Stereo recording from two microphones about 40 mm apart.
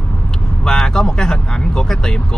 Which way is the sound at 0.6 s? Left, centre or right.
Centre.